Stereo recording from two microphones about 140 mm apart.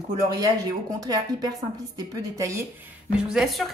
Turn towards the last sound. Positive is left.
turn(degrees=0)  # may be behind; listen again after turning